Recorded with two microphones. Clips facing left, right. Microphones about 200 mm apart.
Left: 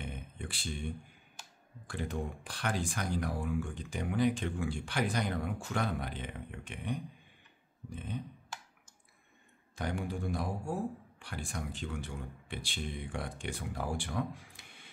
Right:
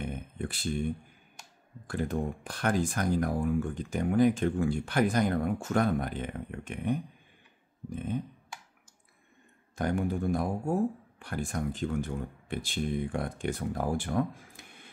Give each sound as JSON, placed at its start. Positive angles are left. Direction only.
{"t": 0.0, "sound": "a sound", "side_deg": -50}
{"t": 1.9, "sound": "speech", "side_deg": -50}
{"t": 9.8, "sound": "speech", "side_deg": -50}